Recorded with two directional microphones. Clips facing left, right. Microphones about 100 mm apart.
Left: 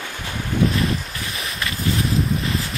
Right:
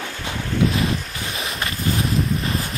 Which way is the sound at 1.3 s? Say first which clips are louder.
Right 1 dB; 30° right (ahead or behind).